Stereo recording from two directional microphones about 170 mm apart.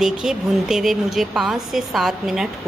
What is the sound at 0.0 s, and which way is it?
A woman's voice, 5° right (ahead or behind).